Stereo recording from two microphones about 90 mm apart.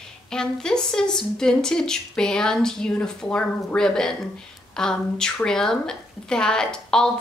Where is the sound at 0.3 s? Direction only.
5° left (ahead or behind).